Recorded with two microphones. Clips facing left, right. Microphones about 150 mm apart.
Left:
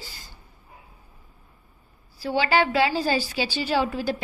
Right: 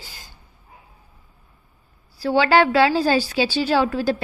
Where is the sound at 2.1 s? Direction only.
90° right.